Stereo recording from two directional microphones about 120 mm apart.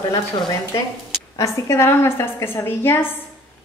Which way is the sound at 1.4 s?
25° left (ahead or behind).